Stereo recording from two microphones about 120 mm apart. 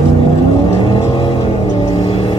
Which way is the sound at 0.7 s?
50° left (ahead or behind).